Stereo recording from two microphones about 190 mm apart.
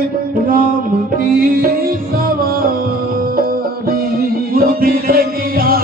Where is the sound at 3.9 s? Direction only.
50° right (ahead or behind).